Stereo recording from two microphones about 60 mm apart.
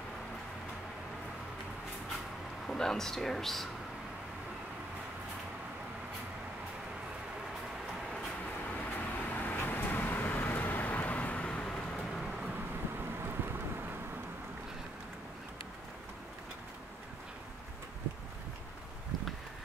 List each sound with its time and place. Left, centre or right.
2.6 s speech: centre
8.7 s vehicle: left; by 11.8 s centre
13.2 s vehicle: right